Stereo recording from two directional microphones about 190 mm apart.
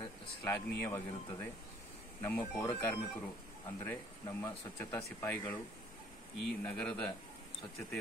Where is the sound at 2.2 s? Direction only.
10° left (ahead or behind).